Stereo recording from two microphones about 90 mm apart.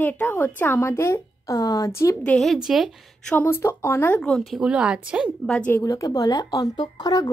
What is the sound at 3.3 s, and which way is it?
Speech, 25° left (ahead or behind).